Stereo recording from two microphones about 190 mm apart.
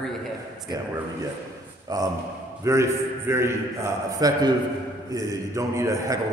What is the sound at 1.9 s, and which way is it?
A man's voice, 20° right (ahead or behind).